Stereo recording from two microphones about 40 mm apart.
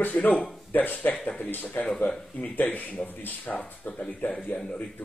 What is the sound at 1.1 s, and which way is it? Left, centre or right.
Speech, left.